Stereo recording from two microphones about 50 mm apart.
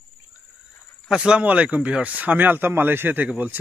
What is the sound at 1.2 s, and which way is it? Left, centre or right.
Speech, right.